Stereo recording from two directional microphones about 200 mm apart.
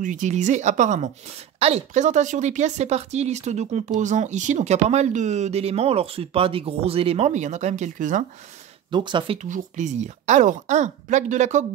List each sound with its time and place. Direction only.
0.0 s speech: 40° right (ahead or behind)
8.9 s speech: 25° right (ahead or behind)
9.4 s speech: 35° right (ahead or behind)